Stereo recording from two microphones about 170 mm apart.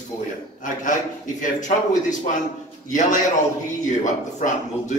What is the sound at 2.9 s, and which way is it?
A man's voice, 45° left (ahead or behind).